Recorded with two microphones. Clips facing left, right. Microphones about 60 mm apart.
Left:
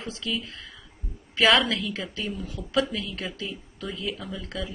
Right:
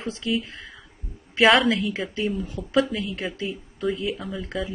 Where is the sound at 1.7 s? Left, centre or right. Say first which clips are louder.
Right 6 dB; right.